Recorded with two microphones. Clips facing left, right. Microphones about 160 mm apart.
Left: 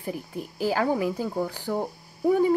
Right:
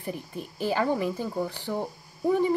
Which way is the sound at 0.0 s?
10° left (ahead or behind).